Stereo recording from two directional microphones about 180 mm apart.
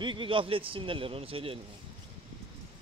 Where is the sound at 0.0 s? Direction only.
25° right (ahead or behind).